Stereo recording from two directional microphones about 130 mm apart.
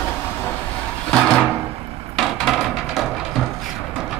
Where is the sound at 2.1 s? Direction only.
Centre (ahead or behind).